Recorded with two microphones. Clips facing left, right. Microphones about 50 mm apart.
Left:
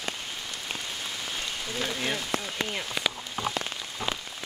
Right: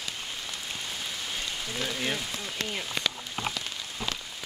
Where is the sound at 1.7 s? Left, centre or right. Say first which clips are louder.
Left 1 dB; centre.